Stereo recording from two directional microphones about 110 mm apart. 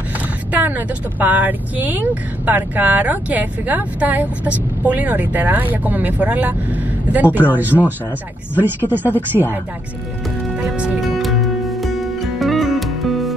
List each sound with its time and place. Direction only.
0.5 s speech: 15° right (ahead or behind)
10.6 s music: 10° right (ahead or behind)